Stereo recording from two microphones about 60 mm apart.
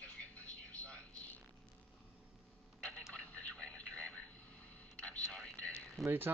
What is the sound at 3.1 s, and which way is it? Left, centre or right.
Radio, left.